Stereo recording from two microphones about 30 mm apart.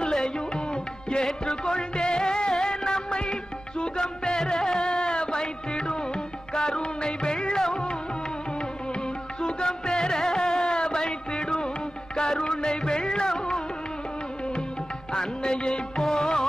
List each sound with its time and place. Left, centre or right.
0.0 s music: left
9.4 s music: left
15.1 s music: left